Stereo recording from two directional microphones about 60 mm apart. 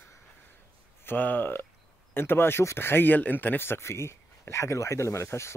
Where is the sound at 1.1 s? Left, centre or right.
Left.